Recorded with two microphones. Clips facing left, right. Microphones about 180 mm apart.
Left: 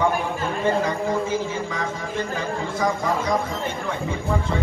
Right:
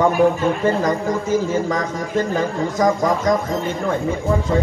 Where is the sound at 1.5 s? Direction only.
45° right (ahead or behind).